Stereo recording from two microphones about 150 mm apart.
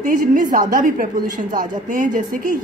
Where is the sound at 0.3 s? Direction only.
60° right (ahead or behind).